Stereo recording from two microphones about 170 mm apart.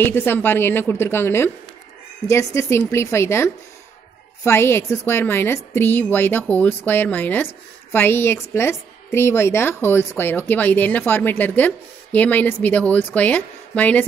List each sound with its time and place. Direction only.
0.0 s a woman's voice: 10° left (ahead or behind)
4.5 s a woman's voice: 15° left (ahead or behind)